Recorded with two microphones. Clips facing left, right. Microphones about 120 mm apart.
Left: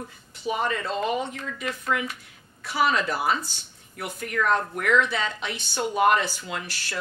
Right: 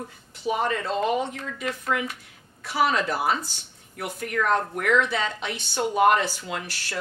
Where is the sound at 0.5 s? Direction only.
45° right (ahead or behind).